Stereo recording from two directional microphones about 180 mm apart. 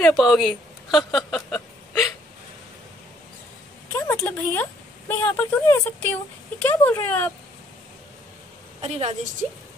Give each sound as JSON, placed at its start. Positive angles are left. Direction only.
{"t": 0.0, "sound": "a woman's voice", "side_deg": 0}
{"t": 3.9, "sound": "speech", "side_deg": 10}
{"t": 8.8, "sound": "a woman's voice", "side_deg": -35}